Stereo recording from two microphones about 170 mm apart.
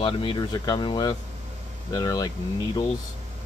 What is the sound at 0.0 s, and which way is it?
Speech, 30° left (ahead or behind).